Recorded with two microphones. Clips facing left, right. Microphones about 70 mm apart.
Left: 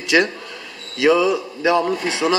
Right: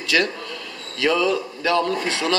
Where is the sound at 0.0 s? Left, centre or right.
Left.